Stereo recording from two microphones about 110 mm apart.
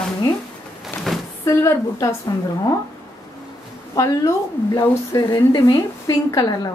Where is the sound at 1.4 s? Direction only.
25° left (ahead or behind).